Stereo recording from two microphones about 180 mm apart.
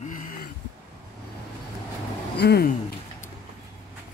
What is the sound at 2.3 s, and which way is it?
Speech, 65° left (ahead or behind).